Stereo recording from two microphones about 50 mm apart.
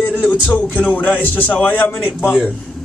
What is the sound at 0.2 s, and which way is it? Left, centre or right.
Speech, left.